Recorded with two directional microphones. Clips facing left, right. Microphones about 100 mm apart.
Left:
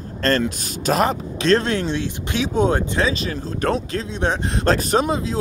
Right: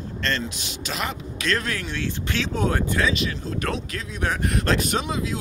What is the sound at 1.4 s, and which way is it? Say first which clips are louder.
Speech: left 9 dB; 30° left (ahead or behind).